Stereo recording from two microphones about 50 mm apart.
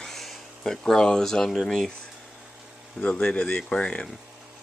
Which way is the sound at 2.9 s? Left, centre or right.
Left.